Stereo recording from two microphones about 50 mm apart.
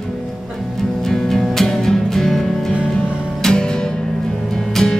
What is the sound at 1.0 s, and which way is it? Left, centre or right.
Music, centre.